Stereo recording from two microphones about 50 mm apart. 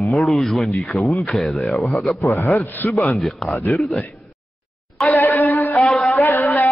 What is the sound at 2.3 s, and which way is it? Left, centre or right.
Speech, left.